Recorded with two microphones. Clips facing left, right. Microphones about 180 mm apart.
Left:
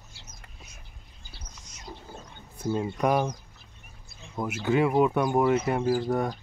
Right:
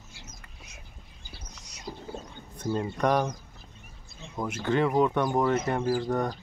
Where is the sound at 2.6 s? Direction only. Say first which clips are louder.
Left 1 dB; 10° left (ahead or behind).